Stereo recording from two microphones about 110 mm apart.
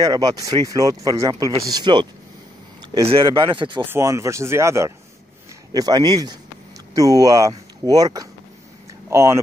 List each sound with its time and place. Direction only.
0.0 s speech: 35° right (ahead or behind)
1.7 s speech: 40° right (ahead or behind)
3.0 s speech: 60° right (ahead or behind)
3.3 s speech: 50° right (ahead or behind)
3.8 s speech: 25° right (ahead or behind)